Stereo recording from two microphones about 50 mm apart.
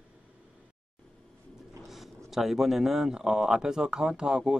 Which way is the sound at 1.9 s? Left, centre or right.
Centre.